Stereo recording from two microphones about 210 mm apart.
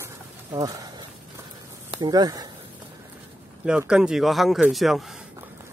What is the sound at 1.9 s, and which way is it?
Speech, 20° right (ahead or behind).